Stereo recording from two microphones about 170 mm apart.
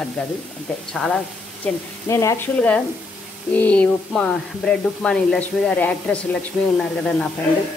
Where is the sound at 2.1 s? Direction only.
15° left (ahead or behind).